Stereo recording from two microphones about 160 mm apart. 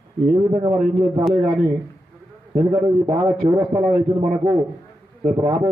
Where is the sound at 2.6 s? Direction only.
25° right (ahead or behind).